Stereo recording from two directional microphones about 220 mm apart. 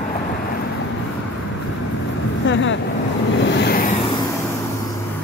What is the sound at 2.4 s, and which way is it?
Vehicle, 55° left (ahead or behind).